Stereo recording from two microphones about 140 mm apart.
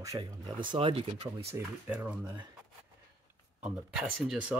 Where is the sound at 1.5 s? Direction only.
10° right (ahead or behind).